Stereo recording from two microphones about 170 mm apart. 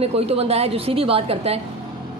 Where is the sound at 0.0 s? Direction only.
35° right (ahead or behind).